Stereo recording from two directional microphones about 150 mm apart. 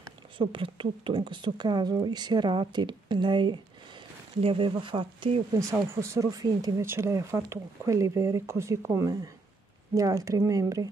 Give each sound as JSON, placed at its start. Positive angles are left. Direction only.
{"t": 0.4, "sound": "speech", "side_deg": -35}
{"t": 5.6, "sound": "speech", "side_deg": -20}